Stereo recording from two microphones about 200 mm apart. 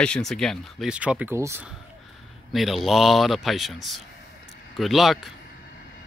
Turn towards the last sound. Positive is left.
turn(degrees=0)  # may be behind; listen again after turning